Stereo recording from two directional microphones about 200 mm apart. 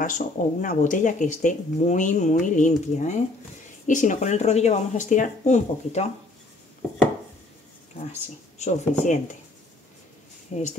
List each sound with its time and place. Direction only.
0.0 s speech: 40° left (ahead or behind)
8.1 s speech: 35° left (ahead or behind)
10.5 s speech: 35° left (ahead or behind)